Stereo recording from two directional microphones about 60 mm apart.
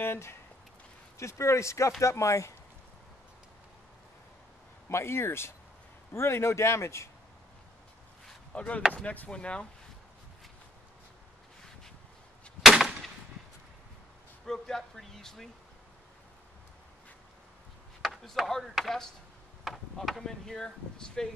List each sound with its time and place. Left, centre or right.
0.0 s speech: left
1.1 s speech: left
4.8 s speech: left
8.5 s speech: left
12.6 s a sound: centre
14.4 s speech: centre
18.0 s speech: centre